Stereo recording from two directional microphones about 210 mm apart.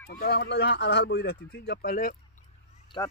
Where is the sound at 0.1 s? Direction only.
50° left (ahead or behind).